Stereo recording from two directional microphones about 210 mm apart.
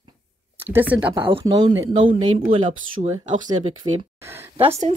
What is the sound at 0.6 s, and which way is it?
Speech, 10° right (ahead or behind).